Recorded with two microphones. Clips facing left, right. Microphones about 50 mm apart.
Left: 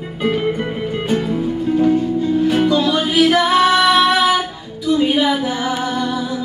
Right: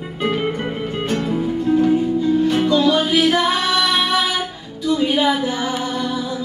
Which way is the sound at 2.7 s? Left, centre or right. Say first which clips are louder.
Right 1 dB; left.